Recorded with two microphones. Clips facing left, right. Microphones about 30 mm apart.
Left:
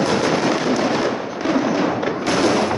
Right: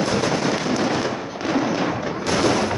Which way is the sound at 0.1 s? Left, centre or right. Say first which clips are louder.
Left 3 dB; left.